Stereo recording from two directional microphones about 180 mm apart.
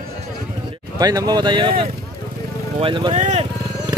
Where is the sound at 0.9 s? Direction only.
20° right (ahead or behind).